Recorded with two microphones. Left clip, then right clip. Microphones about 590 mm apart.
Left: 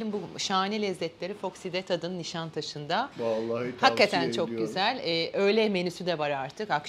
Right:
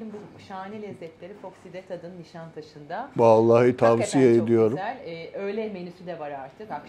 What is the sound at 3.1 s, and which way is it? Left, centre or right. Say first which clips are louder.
Speech: right 13 dB; right.